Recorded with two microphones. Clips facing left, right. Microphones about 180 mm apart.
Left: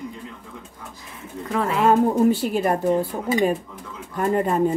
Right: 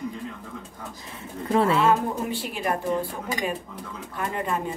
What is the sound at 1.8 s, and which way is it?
Speech, 45° left (ahead or behind).